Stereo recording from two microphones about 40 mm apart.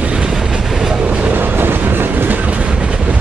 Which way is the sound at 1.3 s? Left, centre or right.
Right.